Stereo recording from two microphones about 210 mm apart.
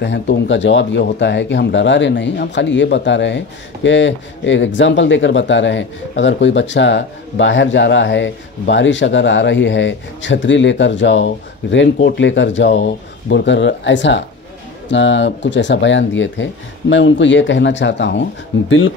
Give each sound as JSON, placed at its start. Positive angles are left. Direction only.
{"t": 0.0, "sound": "speech", "side_deg": 55}